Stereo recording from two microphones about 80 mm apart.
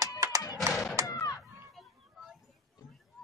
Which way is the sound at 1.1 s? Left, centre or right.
Left.